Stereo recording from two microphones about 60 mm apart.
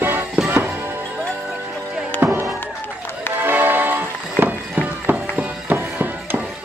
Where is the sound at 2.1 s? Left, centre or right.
Right.